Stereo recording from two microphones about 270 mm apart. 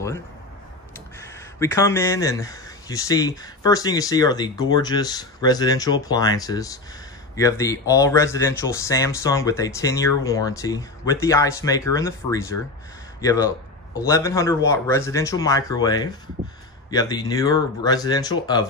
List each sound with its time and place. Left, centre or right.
0.9 s speech: centre